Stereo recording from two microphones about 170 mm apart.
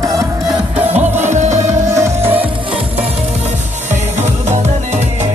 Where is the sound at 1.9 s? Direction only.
15° right (ahead or behind).